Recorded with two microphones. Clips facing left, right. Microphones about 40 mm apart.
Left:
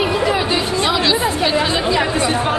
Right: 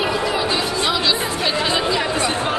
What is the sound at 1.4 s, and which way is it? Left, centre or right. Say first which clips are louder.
Speech: left 3 dB; centre.